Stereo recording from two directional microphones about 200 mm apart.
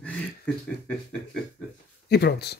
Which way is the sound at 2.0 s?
55° left (ahead or behind).